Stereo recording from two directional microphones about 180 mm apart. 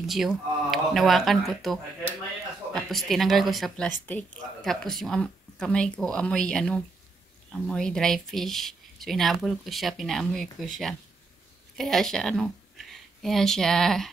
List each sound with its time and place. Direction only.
0.0 s speech: centre (ahead or behind)
11.7 s a woman's voice: centre (ahead or behind)